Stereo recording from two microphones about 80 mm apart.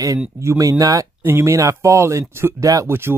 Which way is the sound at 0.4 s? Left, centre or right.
Right.